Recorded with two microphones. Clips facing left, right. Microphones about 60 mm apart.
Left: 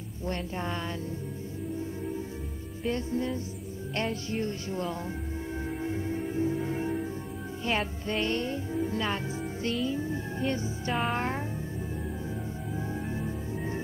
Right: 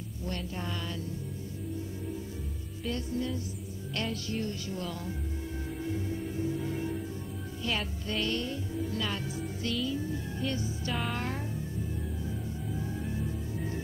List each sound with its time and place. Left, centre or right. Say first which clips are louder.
0.3 s speech: left 4 dB; left
2.8 s music: left 3 dB; left
3.9 s speech: left 3 dB; left
5.8 s music: left 1 dB; left
11.1 s speech: left 5 dB; left
12.7 s organ: left 3 dB; left